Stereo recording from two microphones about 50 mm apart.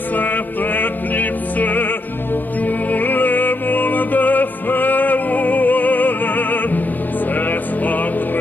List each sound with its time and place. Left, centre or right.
0.1 s music: left